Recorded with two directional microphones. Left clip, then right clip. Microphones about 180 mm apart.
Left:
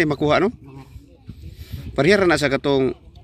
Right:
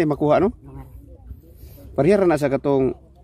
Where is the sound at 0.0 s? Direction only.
10° right (ahead or behind).